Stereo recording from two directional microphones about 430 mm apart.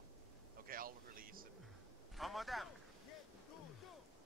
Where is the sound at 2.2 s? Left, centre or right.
Centre.